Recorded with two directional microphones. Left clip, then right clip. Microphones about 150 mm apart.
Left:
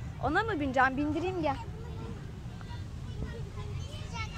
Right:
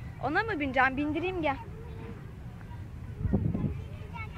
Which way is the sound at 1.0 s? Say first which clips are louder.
Right 1 dB; 5° right (ahead or behind).